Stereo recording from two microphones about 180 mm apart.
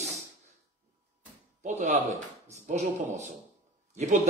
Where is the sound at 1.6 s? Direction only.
40° right (ahead or behind).